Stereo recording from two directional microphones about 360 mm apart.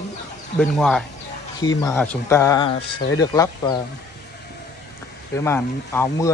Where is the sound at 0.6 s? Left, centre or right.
Centre.